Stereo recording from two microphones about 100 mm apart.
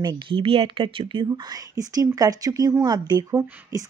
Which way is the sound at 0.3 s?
65° right (ahead or behind).